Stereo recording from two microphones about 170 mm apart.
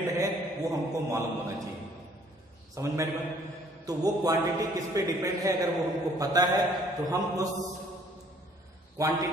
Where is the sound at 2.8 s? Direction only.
20° right (ahead or behind).